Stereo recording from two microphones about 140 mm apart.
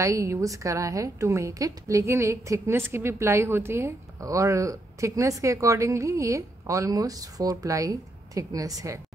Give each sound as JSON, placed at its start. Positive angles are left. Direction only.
{"t": 0.0, "sound": "a woman's voice", "side_deg": -20}